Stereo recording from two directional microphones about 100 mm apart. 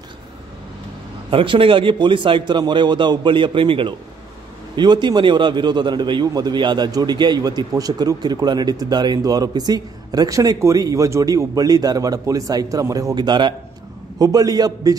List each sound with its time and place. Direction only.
1.3 s a man's voice: 60° right (ahead or behind)
4.7 s a man's voice: 50° right (ahead or behind)
13.1 s a man's voice: 45° right (ahead or behind)